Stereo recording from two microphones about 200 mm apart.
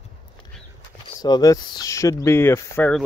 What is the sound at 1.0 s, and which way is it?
Speech, 20° left (ahead or behind).